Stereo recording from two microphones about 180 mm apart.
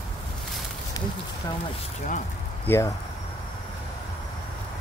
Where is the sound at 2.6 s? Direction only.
15° left (ahead or behind).